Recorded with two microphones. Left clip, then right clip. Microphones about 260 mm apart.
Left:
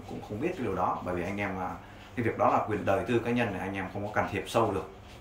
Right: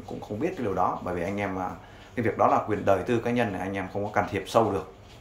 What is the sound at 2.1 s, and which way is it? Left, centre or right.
Speech, centre.